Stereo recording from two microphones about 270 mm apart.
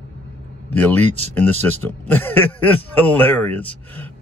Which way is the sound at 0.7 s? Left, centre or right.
Centre.